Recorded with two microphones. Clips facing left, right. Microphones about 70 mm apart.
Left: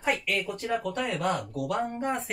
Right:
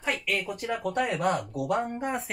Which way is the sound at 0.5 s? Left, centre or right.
Centre.